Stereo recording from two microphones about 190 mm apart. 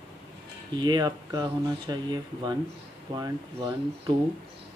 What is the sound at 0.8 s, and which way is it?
Speech, 20° right (ahead or behind).